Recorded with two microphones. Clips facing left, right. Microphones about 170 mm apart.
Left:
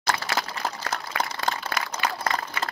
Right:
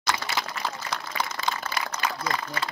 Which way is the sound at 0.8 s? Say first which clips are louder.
Left 2 dB; 50° left (ahead or behind).